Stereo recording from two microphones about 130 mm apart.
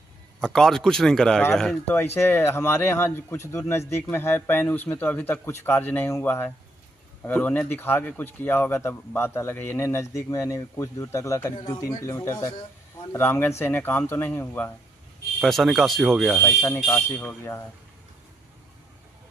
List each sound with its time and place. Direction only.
0.4 s speech: 5° left (ahead or behind)
2.1 s a man's voice: 20° left (ahead or behind)
13.1 s a man's voice: 15° left (ahead or behind)
15.4 s speech: centre (ahead or behind)
16.6 s speech: 20° left (ahead or behind)